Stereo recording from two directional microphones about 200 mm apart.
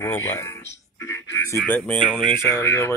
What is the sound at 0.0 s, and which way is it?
Music, 15° left (ahead or behind).